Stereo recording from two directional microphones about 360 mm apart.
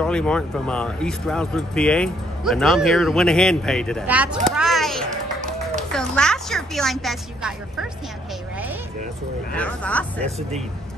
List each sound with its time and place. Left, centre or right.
0.0 s speech: centre
9.5 s speech: centre